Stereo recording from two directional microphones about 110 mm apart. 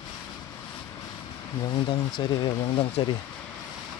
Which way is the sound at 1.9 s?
45° left (ahead or behind).